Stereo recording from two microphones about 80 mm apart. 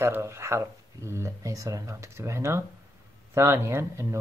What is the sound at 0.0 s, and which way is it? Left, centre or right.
Speech, right.